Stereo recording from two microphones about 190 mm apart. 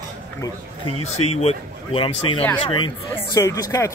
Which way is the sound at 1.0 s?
35° left (ahead or behind).